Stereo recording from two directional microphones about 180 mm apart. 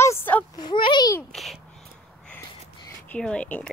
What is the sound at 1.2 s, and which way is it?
Speech, centre (ahead or behind).